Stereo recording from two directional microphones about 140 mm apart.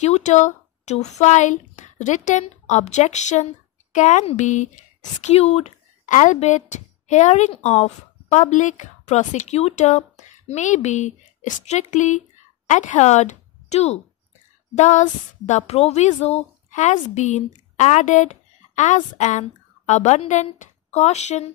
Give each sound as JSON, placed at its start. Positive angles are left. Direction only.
{"t": 0.0, "sound": "a woman's voice", "side_deg": 55}